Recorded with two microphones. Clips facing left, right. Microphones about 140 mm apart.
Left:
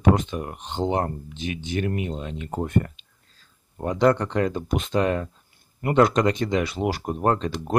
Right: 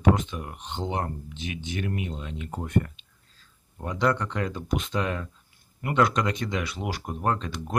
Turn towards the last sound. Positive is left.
turn(degrees=35)  # may be behind; listen again after turning